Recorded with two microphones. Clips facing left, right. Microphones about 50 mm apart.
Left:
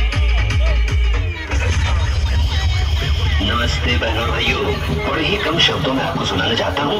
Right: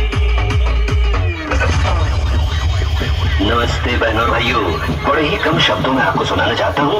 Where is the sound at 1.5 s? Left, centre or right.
Right.